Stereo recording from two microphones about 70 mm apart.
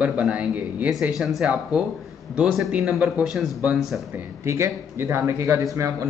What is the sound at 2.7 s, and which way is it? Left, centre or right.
Speech, centre.